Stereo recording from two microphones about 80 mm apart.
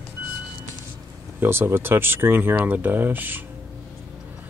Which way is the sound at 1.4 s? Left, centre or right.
Right.